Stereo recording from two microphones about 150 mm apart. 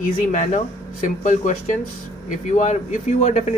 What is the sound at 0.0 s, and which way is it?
Speech, 60° left (ahead or behind).